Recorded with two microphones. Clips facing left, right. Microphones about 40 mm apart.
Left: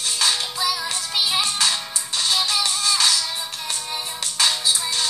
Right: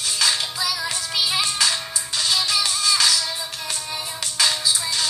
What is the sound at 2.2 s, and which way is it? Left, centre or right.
Music, centre.